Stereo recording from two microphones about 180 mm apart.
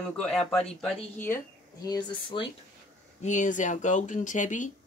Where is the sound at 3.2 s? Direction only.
45° left (ahead or behind).